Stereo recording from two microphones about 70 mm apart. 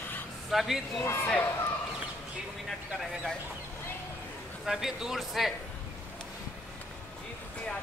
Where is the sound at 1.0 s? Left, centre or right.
Left.